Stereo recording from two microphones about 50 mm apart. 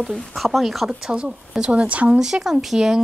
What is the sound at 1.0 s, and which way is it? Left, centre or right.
Speech, centre.